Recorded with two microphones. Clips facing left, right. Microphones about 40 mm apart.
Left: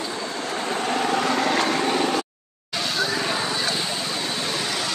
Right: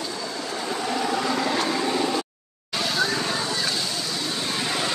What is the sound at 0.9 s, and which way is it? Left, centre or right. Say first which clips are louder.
Vehicle: left 2 dB; left.